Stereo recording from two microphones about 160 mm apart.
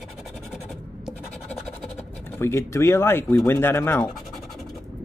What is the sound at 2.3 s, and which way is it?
Speech, 15° left (ahead or behind).